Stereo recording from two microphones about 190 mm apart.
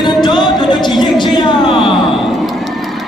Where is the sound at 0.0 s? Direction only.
25° left (ahead or behind).